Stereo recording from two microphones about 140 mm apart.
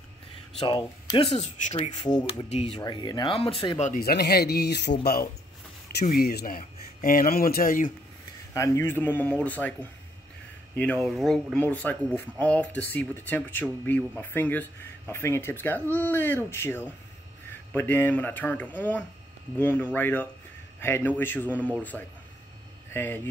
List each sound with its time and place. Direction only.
0.6 s speech: 35° left (ahead or behind)
1.3 s speech: 50° left (ahead or behind)
2.0 s speech: 30° left (ahead or behind)
2.5 s speech: 50° left (ahead or behind)
2.8 s speech: 35° left (ahead or behind)
3.8 s speech: 85° left
8.5 s speech: 20° left (ahead or behind)